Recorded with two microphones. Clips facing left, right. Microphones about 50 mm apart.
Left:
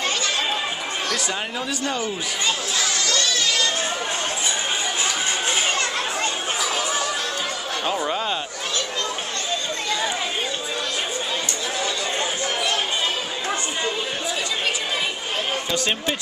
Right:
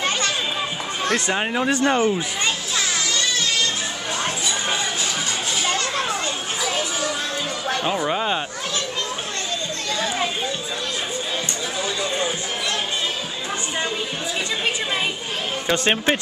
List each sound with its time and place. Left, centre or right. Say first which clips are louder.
1.0 s speech: right 7 dB; right
3.1 s a sound: even; right
7.8 s speech: right 1 dB; centre
15.7 s speech: right 7 dB; right